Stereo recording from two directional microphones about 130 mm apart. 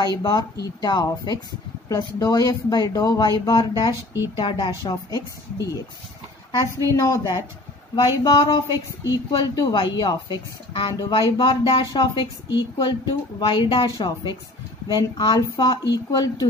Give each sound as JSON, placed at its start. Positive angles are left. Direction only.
{"t": 0.0, "sound": "speech", "side_deg": 35}
{"t": 7.0, "sound": "a woman's voice", "side_deg": 30}